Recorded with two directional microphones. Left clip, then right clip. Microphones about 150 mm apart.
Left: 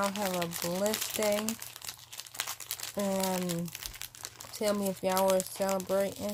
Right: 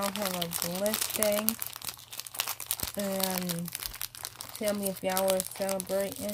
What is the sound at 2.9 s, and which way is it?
Speech, 40° left (ahead or behind).